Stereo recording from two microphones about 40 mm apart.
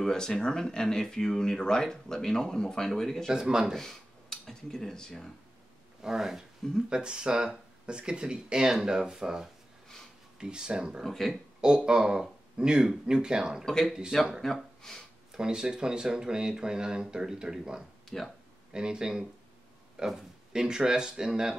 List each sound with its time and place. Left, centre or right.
0.0 s speech: centre
3.3 s speech: centre
3.7 s speech: centre
6.0 s speech: centre
6.9 s speech: right
11.2 s speech: centre
11.6 s speech: right
13.7 s speech: centre
15.3 s speech: centre
18.1 s speech: centre
18.7 s speech: right